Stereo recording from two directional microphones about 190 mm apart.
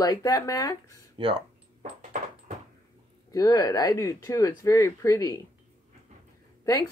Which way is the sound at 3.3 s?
20° left (ahead or behind).